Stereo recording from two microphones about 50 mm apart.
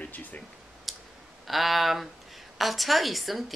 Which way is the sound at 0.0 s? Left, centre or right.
Left.